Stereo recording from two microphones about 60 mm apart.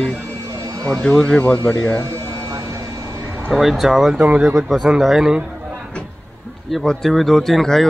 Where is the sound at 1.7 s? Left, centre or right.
Left.